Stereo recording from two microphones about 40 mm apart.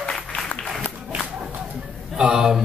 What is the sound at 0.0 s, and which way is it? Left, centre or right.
Applause, centre.